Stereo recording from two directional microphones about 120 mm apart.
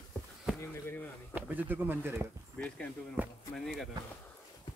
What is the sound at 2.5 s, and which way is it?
Speech, 10° left (ahead or behind).